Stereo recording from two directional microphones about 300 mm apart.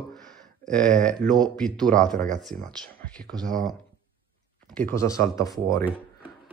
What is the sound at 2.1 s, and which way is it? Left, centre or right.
Speech, right.